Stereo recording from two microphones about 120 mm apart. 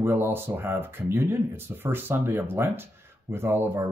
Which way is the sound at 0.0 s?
20° right (ahead or behind).